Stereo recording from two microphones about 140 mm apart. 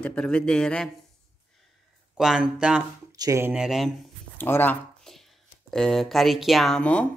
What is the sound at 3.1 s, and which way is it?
Speech, 25° right (ahead or behind).